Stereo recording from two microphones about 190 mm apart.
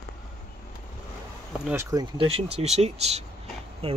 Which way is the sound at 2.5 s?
35° right (ahead or behind).